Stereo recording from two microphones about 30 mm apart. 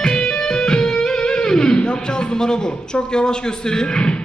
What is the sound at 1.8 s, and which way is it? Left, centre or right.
A man's voice, left.